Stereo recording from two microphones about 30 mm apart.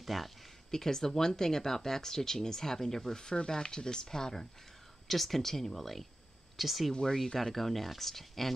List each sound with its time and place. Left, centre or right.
0.0 s speech: centre
0.7 s speech: centre
5.0 s speech: centre
6.9 s speech: centre
7.5 s speech: centre